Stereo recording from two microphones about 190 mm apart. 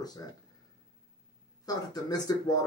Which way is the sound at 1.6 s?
20° left (ahead or behind).